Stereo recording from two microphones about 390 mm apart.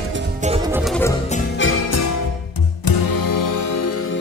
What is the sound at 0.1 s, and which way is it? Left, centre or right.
Music, right.